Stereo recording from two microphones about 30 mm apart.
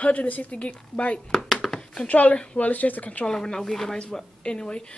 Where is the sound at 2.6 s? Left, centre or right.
Left.